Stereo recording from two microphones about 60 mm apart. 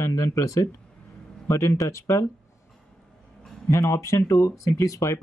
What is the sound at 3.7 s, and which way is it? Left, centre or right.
Speech, left.